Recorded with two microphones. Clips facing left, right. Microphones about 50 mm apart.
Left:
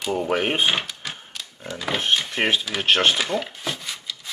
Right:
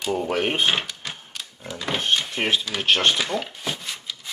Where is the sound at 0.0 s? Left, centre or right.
Centre.